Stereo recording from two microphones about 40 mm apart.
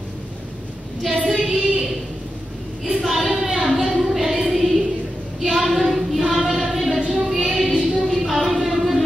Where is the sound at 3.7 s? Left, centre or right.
Centre.